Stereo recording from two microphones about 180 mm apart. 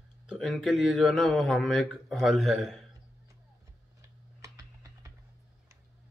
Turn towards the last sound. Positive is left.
turn(degrees=-20)  # may be behind; listen again after turning